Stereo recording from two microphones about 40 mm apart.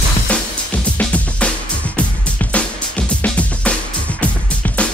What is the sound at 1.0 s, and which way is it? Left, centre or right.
Music, left.